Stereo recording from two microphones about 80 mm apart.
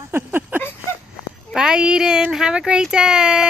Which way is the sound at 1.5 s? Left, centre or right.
Centre.